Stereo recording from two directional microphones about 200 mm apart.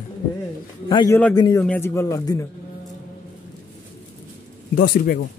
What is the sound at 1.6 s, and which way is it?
Speech, 10° left (ahead or behind).